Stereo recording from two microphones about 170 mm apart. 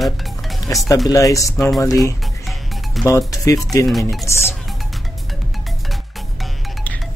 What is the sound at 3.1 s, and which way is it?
Speech, 20° left (ahead or behind).